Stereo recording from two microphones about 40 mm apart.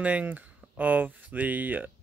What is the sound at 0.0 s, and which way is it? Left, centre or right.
Speech, right.